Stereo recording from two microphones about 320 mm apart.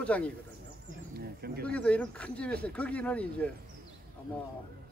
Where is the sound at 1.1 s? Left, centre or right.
Right.